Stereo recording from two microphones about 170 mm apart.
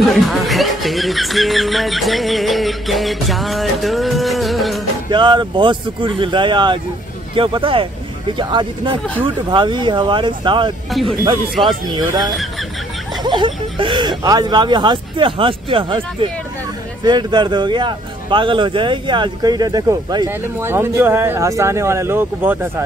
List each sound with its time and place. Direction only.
0.0 s music: centre (ahead or behind)
5.1 s speech: 25° right (ahead or behind)
10.9 s speech: centre (ahead or behind)
11.9 s speech: 25° right (ahead or behind)
13.2 s speech: 25° right (ahead or behind)